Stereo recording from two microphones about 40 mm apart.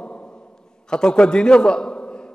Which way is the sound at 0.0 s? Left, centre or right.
Left.